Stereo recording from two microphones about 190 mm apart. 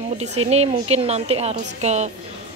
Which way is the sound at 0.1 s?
35° right (ahead or behind).